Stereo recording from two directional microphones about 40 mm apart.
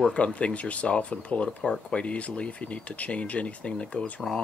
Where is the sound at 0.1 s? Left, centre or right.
Left.